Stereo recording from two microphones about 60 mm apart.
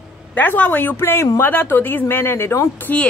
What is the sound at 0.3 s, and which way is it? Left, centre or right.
Speech, left.